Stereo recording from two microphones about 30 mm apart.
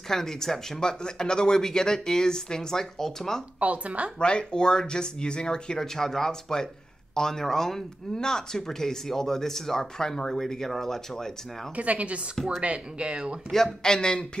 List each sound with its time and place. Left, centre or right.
0.1 s speech: centre
3.5 s a woman's voice: right
4.2 s speech: left
5.9 s speech: centre
8.1 s speech: left
11.7 s a woman's voice: right
13.0 s speech: right
13.8 s speech: left